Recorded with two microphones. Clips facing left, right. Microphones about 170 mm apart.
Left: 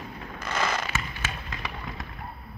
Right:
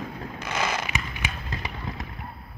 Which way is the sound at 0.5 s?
15° right (ahead or behind).